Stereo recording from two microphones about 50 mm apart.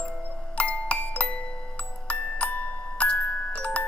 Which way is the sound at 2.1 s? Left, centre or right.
Left.